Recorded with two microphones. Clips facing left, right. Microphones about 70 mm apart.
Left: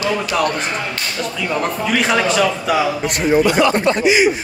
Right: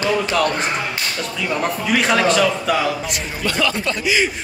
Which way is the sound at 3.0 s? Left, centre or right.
Left.